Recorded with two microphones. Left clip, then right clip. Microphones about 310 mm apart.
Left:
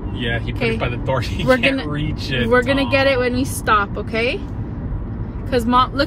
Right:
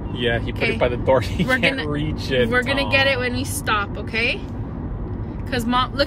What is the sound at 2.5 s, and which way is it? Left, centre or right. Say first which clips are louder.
Speech: left 3 dB; centre.